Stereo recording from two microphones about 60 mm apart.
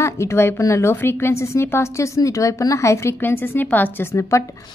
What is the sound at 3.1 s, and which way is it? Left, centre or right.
Speech, left.